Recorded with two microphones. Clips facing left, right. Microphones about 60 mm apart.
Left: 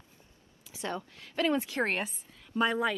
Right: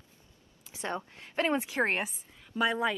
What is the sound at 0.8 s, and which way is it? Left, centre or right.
Speech, right.